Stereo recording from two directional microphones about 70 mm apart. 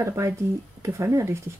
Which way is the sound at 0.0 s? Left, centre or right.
Right.